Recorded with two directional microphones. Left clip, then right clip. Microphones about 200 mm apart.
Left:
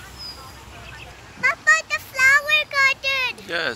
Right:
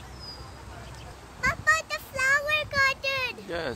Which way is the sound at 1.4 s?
20° right (ahead or behind).